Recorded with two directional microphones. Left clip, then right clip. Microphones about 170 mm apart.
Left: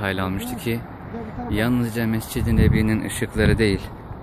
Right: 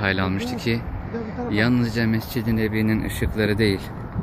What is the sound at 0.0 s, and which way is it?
Speech, 10° left (ahead or behind).